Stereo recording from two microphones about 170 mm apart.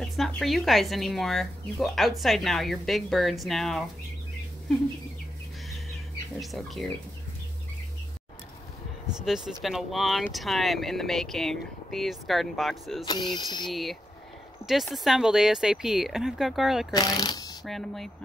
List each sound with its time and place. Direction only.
0.0 s speech: centre (ahead or behind)
6.4 s speech: centre (ahead or behind)
9.3 s speech: centre (ahead or behind)
13.0 s speech: 25° left (ahead or behind)
13.7 s speech: centre (ahead or behind)
16.9 s speech: 25° left (ahead or behind)
17.6 s speech: centre (ahead or behind)